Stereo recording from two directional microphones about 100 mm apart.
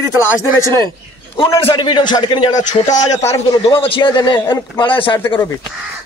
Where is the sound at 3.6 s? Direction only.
65° left (ahead or behind).